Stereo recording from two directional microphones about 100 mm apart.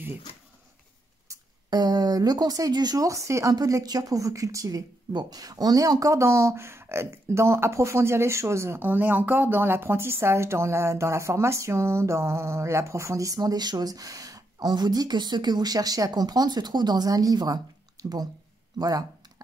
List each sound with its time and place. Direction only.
1.7 s speech: 40° right (ahead or behind)